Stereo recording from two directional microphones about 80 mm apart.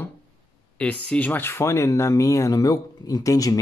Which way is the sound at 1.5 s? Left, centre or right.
Left.